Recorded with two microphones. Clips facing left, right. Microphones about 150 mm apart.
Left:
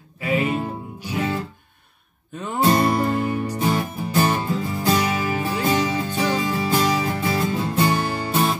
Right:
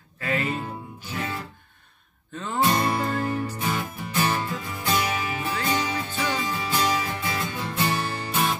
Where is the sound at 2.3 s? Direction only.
15° left (ahead or behind).